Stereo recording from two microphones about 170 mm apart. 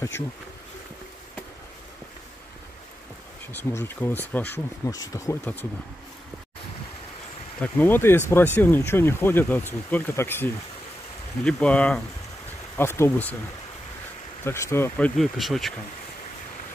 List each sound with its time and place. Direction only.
3.5 s speech: 10° left (ahead or behind)
7.6 s speech: 10° left (ahead or behind)
14.4 s speech: 15° left (ahead or behind); by 15.7 s centre (ahead or behind)